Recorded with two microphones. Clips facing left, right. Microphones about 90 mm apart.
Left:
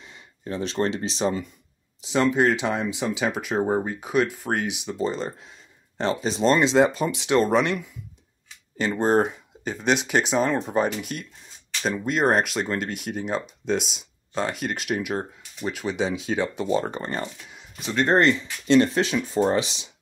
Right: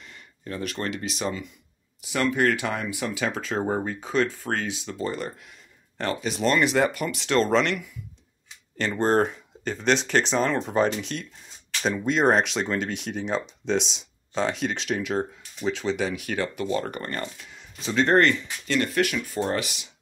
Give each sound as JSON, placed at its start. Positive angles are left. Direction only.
{"t": 0.0, "sound": "speech", "side_deg": 20}
{"t": 8.7, "sound": "speech", "side_deg": 10}
{"t": 16.0, "sound": "speech", "side_deg": 20}
{"t": 18.0, "sound": "speech", "side_deg": 20}